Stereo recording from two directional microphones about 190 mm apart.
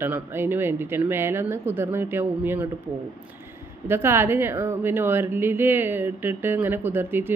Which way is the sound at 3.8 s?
10° right (ahead or behind).